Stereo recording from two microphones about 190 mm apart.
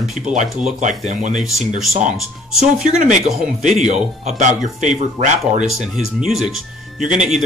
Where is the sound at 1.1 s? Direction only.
40° right (ahead or behind).